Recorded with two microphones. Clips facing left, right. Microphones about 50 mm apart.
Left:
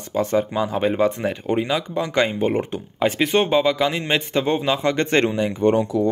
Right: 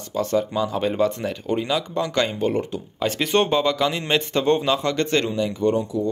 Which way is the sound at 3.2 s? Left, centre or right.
Centre.